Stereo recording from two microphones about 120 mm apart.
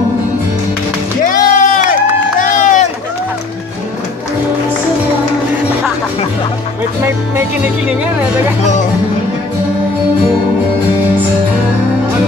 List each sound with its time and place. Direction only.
1.2 s music: 90° left
2.4 s run: 90° left